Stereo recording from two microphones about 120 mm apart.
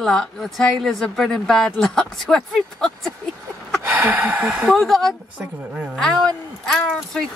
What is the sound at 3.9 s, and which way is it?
Speech, 15° right (ahead or behind).